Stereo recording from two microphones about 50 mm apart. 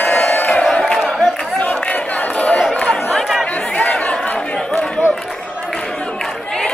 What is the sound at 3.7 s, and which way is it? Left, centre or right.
Chatter, left.